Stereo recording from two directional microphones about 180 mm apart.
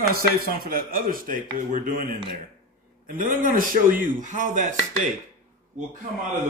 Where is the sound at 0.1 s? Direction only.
55° right (ahead or behind).